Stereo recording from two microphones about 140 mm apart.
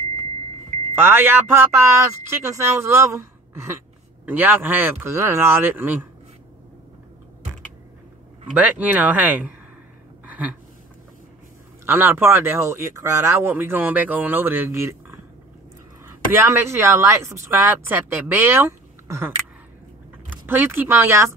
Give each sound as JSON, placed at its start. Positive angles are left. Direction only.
{"t": 0.9, "sound": "speech", "side_deg": -15}
{"t": 8.5, "sound": "speech", "side_deg": -10}
{"t": 10.2, "sound": "a sound", "side_deg": -10}
{"t": 11.8, "sound": "speech", "side_deg": -15}